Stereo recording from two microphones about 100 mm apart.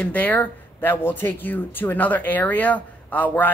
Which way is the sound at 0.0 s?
15° left (ahead or behind).